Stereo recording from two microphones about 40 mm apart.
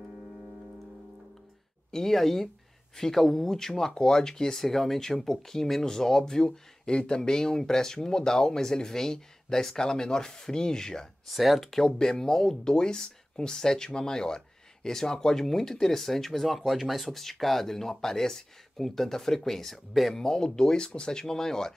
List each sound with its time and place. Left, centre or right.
1.9 s speech: centre
11.2 s speech: centre
20.2 s speech: centre